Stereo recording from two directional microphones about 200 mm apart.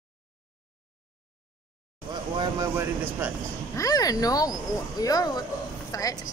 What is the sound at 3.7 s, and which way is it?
Speech, 15° left (ahead or behind).